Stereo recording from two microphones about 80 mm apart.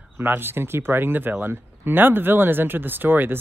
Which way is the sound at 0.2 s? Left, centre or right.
Right.